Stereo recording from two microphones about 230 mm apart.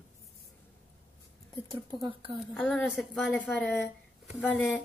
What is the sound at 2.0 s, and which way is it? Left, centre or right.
Speech, right.